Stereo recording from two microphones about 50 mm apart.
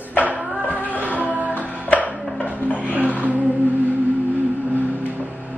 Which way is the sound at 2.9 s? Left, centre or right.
Right.